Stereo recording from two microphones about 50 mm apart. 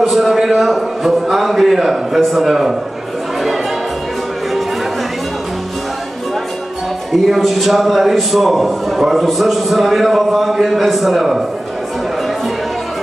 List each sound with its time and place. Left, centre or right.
0.0 s a man's voice: centre
7.1 s a man's voice: centre